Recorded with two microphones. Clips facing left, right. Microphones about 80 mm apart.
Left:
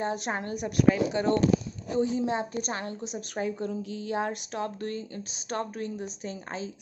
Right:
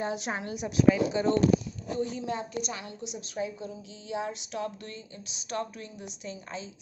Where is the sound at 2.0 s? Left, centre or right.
Left.